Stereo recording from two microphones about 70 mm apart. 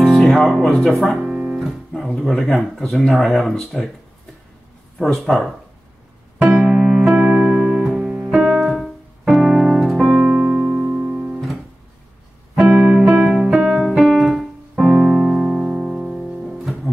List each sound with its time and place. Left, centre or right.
0.0 s music: centre
0.8 s speech: centre
1.3 s guitar: centre
1.9 s speech: centre
4.9 s speech: centre
6.4 s music: centre
7.2 s music: centre
9.3 s piano: centre
12.5 s music: centre
13.3 s music: centre